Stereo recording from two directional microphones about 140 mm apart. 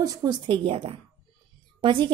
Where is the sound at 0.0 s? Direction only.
25° right (ahead or behind).